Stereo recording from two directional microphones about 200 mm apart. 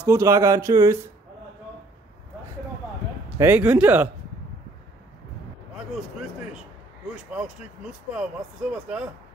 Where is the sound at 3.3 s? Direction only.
10° right (ahead or behind).